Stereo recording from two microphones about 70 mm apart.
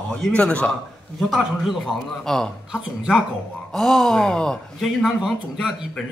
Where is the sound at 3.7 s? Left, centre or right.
Centre.